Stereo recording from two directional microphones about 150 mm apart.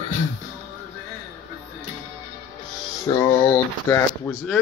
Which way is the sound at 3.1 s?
20° left (ahead or behind).